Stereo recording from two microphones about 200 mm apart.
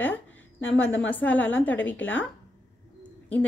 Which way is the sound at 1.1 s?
10° left (ahead or behind).